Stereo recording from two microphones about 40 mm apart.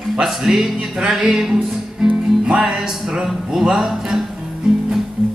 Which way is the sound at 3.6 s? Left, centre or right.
Centre.